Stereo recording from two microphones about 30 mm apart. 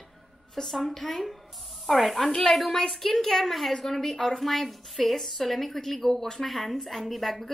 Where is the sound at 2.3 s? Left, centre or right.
Left.